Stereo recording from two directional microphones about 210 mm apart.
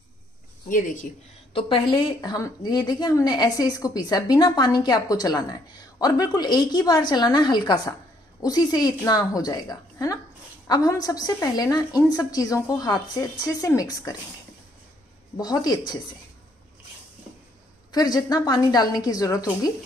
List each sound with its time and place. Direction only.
0.7 s speech: 40° left (ahead or behind)
1.5 s a woman's voice: 25° left (ahead or behind)
15.3 s a woman's voice: 20° left (ahead or behind)
17.9 s speech: 20° left (ahead or behind)